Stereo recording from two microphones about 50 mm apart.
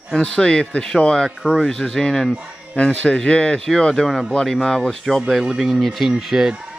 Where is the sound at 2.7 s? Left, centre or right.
Left; by 4.9 s centre.